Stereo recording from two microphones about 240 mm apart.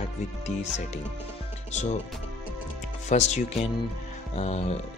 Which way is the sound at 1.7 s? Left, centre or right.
Left.